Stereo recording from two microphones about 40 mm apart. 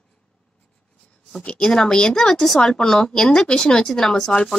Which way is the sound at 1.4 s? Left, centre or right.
Left.